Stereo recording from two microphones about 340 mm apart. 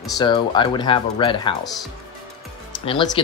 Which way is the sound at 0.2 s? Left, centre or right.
Centre.